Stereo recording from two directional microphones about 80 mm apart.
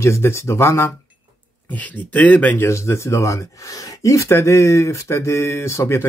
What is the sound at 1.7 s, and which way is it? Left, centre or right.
Speech, centre.